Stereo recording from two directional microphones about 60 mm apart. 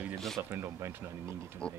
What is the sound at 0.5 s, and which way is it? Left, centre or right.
Speech, right.